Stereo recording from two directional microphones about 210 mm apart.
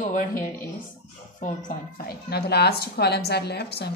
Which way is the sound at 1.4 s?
40° left (ahead or behind).